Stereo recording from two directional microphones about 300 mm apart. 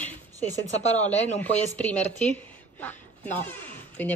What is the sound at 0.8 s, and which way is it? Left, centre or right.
Speech, left.